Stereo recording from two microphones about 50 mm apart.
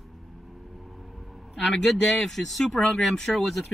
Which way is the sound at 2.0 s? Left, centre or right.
Centre.